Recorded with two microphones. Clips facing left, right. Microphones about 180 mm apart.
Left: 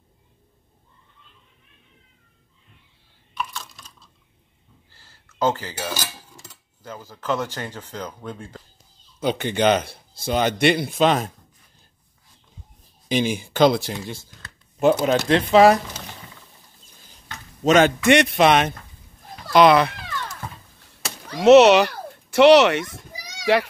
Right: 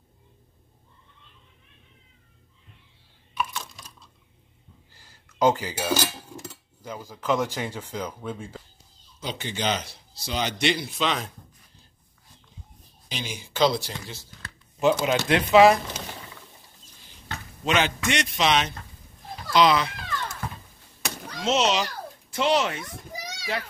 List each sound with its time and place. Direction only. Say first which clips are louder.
3.3 s computer keyboard: right 1 dB; 15° right (ahead or behind)
4.9 s cutlery: right 1 dB; 15° right (ahead or behind)
6.8 s speech: even; 10° right (ahead or behind)
9.2 s speech: left 10 dB; 60° left (ahead or behind)
13.1 s speech: left 13 dB; 50° left (ahead or behind)
17.6 s speech: left 9 dB; 45° left (ahead or behind)
21.4 s a child's voice: left 13 dB; 65° left (ahead or behind)